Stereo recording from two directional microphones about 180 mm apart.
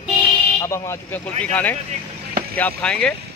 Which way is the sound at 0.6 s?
15° left (ahead or behind).